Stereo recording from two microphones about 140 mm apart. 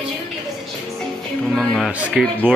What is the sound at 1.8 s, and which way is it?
Music, 5° right (ahead or behind).